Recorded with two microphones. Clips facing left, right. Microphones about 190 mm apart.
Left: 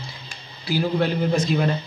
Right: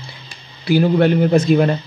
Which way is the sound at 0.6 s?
60° right (ahead or behind).